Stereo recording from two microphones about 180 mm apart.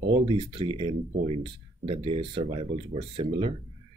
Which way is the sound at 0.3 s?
30° right (ahead or behind).